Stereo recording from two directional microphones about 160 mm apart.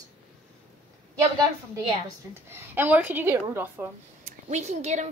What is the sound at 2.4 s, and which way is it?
A woman's voice, 15° right (ahead or behind).